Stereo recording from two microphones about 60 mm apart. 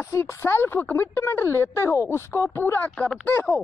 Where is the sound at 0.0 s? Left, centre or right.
Left.